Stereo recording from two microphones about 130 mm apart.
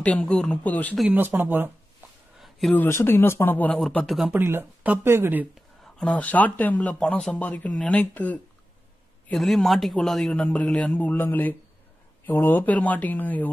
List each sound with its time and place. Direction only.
0.0 s speech: 10° left (ahead or behind)
1.1 s speech: 15° right (ahead or behind)
2.7 s speech: 15° left (ahead or behind)
3.9 s speech: centre (ahead or behind)
4.3 s speech: 15° right (ahead or behind)
5.5 s speech: 5° left (ahead or behind)
9.3 s speech: centre (ahead or behind)